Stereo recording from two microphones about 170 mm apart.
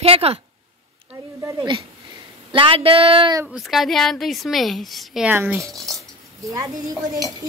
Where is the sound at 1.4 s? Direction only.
20° right (ahead or behind).